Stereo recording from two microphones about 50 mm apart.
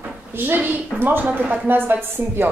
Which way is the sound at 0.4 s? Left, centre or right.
Right.